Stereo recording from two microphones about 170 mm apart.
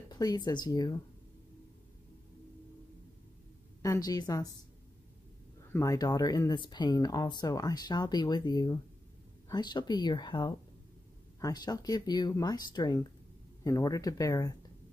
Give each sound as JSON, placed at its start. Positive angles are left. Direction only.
{"t": 0.1, "sound": "speech", "side_deg": 25}
{"t": 3.8, "sound": "speech", "side_deg": 20}
{"t": 5.7, "sound": "speech", "side_deg": 20}